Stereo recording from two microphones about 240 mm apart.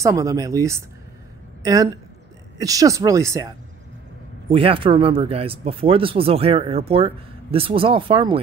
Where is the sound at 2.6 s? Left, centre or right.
Centre.